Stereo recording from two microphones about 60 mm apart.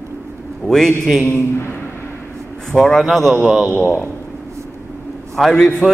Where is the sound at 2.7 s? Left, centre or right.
Centre.